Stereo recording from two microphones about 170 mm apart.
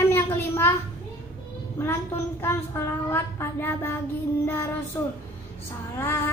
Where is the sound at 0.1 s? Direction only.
15° left (ahead or behind).